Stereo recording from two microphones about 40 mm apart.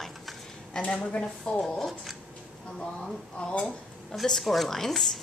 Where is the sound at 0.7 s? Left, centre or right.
Centre.